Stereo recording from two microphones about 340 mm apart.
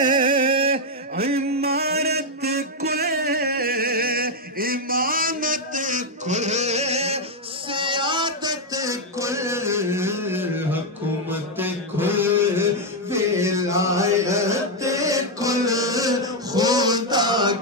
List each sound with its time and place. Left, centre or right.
0.0 s a sound: centre
7.7 s music: centre
11.2 s mantra: centre